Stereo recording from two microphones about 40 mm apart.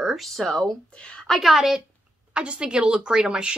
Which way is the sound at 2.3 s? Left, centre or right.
Right.